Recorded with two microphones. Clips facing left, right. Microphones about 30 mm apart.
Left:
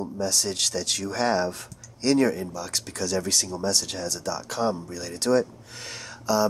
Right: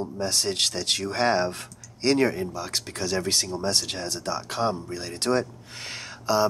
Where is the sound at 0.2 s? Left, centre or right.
Right.